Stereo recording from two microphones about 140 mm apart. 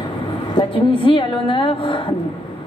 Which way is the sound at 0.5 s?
40° left (ahead or behind).